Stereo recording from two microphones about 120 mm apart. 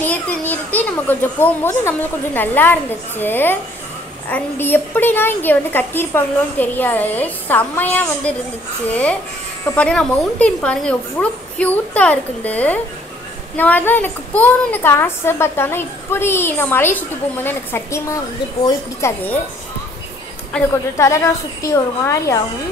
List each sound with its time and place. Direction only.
0.0 s a woman's voice: 15° left (ahead or behind)
9.8 s a woman's voice: 10° left (ahead or behind)
20.5 s a woman's voice: 10° left (ahead or behind)
21.0 s a woman's voice: 25° left (ahead or behind)